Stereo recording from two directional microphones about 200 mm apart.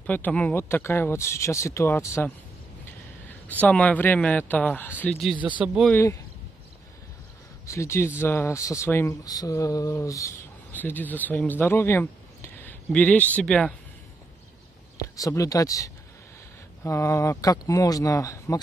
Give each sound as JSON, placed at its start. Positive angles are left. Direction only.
{"t": 0.0, "sound": "speech", "side_deg": 5}
{"t": 3.6, "sound": "speech", "side_deg": 5}
{"t": 5.9, "sound": "speech", "side_deg": 15}
{"t": 7.6, "sound": "speech", "side_deg": 15}
{"t": 15.1, "sound": "speech", "side_deg": 15}